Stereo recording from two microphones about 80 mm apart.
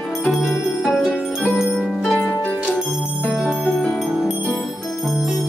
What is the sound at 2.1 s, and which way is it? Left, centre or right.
Music, centre.